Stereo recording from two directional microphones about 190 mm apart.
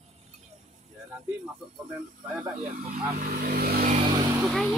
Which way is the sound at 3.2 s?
50° right (ahead or behind).